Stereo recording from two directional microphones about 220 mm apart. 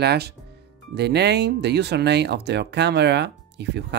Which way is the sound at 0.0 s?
45° right (ahead or behind).